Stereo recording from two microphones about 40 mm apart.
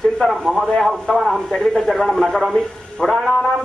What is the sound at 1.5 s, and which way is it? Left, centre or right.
A man's voice, centre.